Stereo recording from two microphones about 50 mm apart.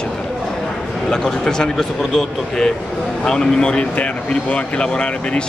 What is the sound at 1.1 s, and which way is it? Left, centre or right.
Speech, centre.